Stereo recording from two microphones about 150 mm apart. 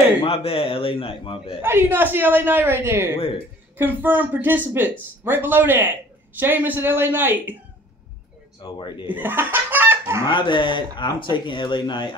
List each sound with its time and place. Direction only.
0.2 s speech: 40° left (ahead or behind)
1.6 s speech: 15° right (ahead or behind)
8.6 s speech: 30° left (ahead or behind)
9.1 s chicken: 15° right (ahead or behind)
10.2 s speech: 30° left (ahead or behind)